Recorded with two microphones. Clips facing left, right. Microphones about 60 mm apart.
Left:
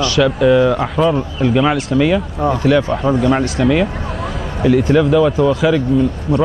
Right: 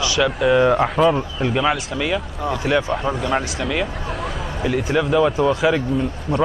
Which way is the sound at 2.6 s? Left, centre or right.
Centre.